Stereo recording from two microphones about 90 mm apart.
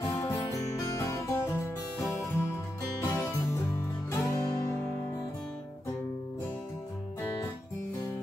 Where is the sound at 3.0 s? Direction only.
20° left (ahead or behind).